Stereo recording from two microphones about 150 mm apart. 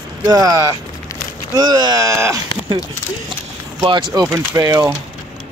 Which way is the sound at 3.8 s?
30° right (ahead or behind).